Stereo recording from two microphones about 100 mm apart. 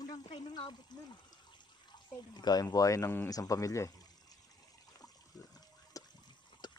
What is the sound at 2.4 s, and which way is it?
Speech, 45° left (ahead or behind).